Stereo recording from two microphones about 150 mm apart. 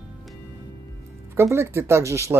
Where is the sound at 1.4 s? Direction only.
20° right (ahead or behind).